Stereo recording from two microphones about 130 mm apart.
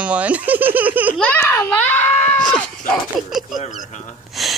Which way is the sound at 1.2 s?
15° left (ahead or behind).